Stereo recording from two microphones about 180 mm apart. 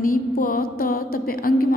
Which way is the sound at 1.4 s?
55° left (ahead or behind).